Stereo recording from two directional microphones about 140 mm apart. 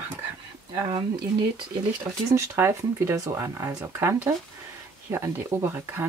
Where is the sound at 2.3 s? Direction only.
20° right (ahead or behind).